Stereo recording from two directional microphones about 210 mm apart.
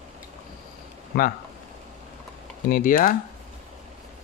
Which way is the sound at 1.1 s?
45° left (ahead or behind).